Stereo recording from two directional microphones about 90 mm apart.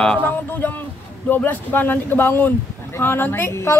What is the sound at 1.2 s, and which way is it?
Speech, 20° left (ahead or behind).